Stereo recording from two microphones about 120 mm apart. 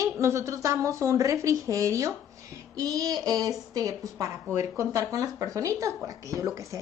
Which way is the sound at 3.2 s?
30° right (ahead or behind).